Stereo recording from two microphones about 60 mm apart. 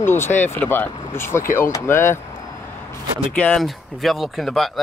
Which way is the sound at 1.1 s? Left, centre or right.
Left.